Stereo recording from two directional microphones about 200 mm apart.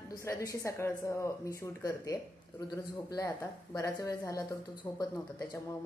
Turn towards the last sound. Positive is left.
turn(degrees=15)  # may be behind; listen again after turning